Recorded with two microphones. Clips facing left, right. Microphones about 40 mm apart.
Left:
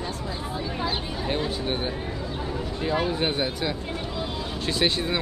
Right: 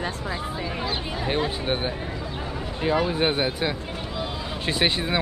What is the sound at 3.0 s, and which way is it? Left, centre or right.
Speech, right.